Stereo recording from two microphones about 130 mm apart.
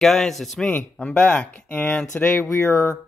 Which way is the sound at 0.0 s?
Centre (ahead or behind).